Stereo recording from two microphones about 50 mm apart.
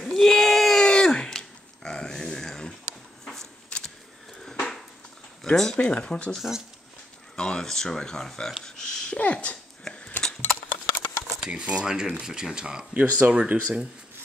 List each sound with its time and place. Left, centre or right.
0.0 s a sound: centre
5.4 s speech: centre
5.8 s speech: left
6.3 s speech: centre
7.3 s speech: centre
8.6 s a sound: centre
9.2 s speech: left
9.9 s a sound: left
11.4 s speech: right